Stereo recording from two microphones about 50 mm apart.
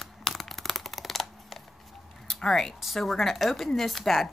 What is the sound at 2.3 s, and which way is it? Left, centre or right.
Speech, centre.